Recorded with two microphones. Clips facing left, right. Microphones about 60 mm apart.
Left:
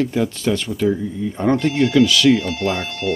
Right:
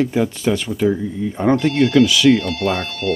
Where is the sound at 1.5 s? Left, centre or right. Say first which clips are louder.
Right 2 dB; centre.